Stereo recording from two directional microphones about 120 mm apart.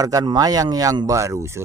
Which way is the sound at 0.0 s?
30° right (ahead or behind).